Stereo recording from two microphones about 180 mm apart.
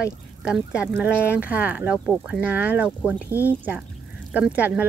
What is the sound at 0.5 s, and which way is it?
Speech, 5° right (ahead or behind).